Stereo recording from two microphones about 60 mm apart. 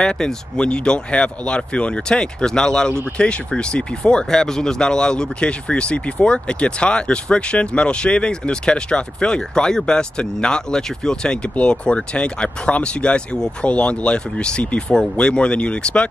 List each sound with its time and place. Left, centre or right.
0.0 s speech: centre